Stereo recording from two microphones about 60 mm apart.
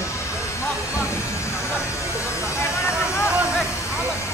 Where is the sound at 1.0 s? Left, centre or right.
Left.